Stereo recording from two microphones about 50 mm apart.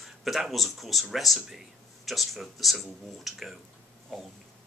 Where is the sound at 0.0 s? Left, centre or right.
Centre.